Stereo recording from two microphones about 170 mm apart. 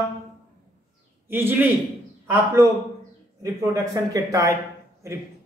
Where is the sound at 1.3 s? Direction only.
15° right (ahead or behind).